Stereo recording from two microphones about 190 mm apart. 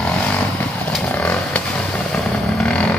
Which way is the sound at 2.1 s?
5° left (ahead or behind).